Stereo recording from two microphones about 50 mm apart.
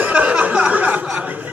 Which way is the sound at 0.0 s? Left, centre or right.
Right.